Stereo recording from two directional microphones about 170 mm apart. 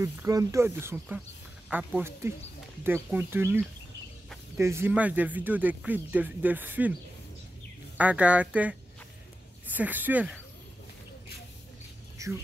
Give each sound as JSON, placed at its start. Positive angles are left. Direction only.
{"t": 0.0, "sound": "speech", "side_deg": -20}
{"t": 8.0, "sound": "speech", "side_deg": -10}
{"t": 12.2, "sound": "speech", "side_deg": -20}